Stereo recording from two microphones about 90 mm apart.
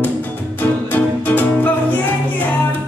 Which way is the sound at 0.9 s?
20° left (ahead or behind).